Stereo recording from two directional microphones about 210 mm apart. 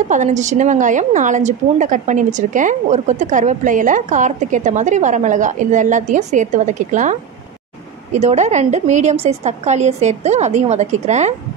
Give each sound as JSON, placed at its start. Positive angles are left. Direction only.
{"t": 0.1, "sound": "a woman's voice", "side_deg": -35}